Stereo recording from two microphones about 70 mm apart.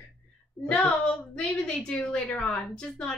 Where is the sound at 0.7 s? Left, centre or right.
Centre.